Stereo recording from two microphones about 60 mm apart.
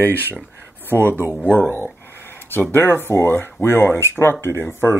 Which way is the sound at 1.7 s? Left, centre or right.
Left.